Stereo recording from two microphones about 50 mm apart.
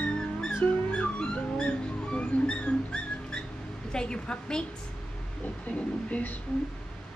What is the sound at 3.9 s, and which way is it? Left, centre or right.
Speech, centre.